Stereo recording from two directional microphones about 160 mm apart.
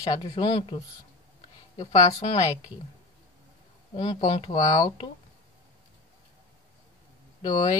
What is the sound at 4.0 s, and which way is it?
Speech, 40° left (ahead or behind).